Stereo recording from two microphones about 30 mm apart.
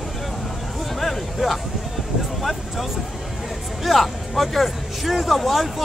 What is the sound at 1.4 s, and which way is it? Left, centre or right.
Speech, centre.